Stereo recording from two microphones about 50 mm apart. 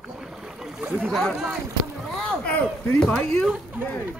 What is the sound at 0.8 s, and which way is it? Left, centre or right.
Speech, right.